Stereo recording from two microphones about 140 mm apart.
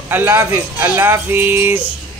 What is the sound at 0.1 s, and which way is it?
A man's voice, 15° right (ahead or behind).